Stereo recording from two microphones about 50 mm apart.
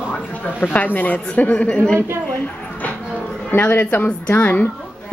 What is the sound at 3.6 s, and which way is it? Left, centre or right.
A woman's voice, left.